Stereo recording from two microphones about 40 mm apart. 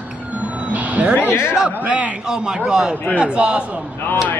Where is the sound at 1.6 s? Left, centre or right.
Right.